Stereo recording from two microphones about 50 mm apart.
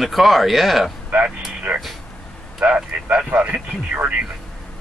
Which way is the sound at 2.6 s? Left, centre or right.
Right.